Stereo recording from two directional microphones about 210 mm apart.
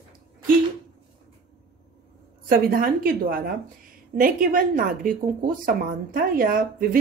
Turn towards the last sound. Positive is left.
turn(degrees=-45)  # may be behind; listen again after turning